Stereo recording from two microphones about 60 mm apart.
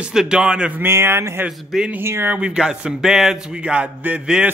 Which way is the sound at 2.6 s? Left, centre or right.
Centre.